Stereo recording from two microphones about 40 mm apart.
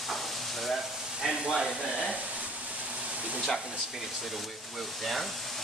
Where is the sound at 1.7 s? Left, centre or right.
Centre.